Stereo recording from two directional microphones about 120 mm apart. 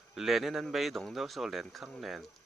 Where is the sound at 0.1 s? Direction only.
Centre (ahead or behind).